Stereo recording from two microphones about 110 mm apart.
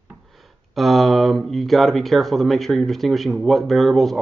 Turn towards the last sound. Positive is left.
turn(degrees=0)  # may be behind; listen again after turning